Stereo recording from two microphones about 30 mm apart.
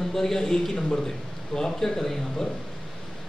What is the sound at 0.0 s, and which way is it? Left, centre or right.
Speech, centre.